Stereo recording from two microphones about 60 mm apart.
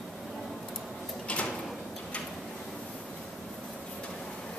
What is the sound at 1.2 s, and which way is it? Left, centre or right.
Drawer open or close, left.